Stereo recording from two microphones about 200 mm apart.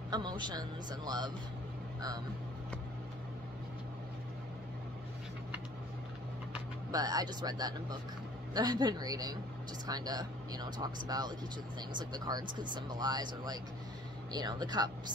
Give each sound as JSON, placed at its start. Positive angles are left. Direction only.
{"t": 0.1, "sound": "speech", "side_deg": -20}
{"t": 6.9, "sound": "speech", "side_deg": -20}